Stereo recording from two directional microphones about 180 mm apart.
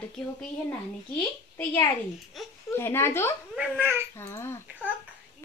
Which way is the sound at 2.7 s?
15° left (ahead or behind).